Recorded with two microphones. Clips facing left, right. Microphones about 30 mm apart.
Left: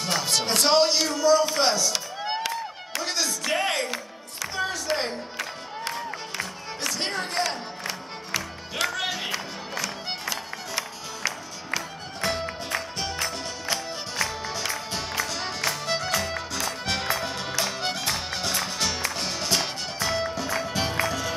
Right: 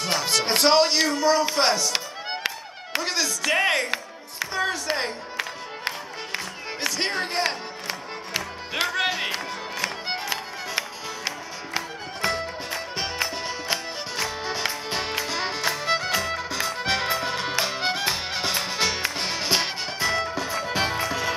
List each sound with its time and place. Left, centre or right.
0.0 s music: right
0.5 s speech: right
3.0 s speech: right
3.6 s music: right